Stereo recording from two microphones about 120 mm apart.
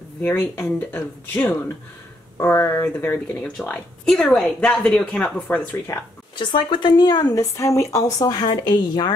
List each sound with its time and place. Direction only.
0.2 s speech: 15° left (ahead or behind)
3.6 s speech: 10° left (ahead or behind)
6.3 s speech: 40° left (ahead or behind)